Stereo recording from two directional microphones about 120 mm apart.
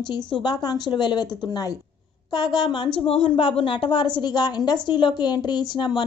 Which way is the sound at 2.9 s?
50° left (ahead or behind).